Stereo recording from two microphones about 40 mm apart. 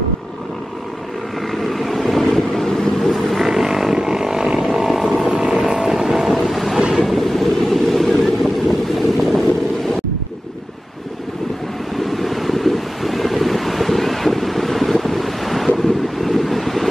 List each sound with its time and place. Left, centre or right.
1.5 s vehicle: centre
3.3 s vehicle: centre
6.8 s train: right
7.1 s train: centre
8.9 s boat: centre
12.0 s wind: centre